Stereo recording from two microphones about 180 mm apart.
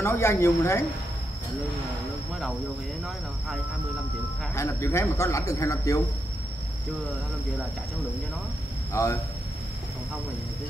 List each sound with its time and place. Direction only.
0.0 s speech: 15° left (ahead or behind)
4.6 s speech: 15° left (ahead or behind)
8.9 s speech: 15° left (ahead or behind)